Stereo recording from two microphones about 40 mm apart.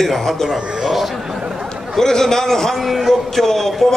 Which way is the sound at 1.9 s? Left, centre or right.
Centre.